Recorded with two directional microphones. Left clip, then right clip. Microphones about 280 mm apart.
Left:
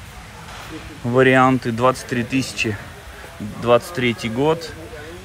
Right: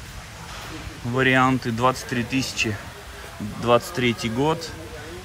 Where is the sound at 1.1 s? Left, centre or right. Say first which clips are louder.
Left 5 dB; centre.